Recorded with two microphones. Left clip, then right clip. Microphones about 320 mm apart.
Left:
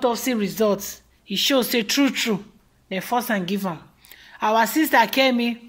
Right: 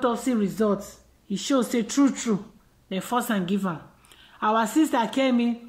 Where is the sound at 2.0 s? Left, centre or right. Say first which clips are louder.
Right 1 dB; left.